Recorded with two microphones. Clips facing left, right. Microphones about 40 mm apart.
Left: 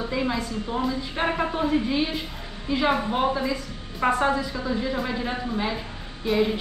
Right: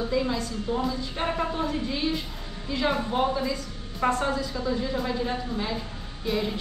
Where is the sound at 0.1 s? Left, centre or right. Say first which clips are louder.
Left 1 dB; centre.